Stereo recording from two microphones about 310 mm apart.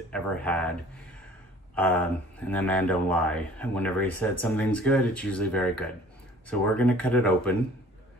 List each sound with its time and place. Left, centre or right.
0.1 s speech: centre
1.8 s speech: centre